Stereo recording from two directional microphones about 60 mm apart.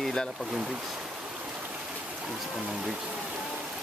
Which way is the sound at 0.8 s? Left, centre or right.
Centre.